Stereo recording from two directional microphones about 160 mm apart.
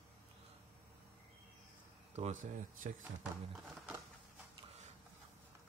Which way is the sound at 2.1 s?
50° right (ahead or behind).